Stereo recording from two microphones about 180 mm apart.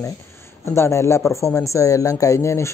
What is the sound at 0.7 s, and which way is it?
Speech, 15° left (ahead or behind).